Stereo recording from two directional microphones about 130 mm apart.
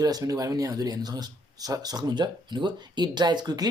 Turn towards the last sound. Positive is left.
turn(degrees=-30)  # may be behind; listen again after turning